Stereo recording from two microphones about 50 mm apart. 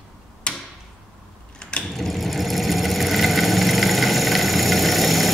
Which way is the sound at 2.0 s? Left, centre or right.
Centre.